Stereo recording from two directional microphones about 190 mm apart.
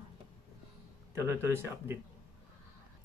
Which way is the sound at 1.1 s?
10° right (ahead or behind).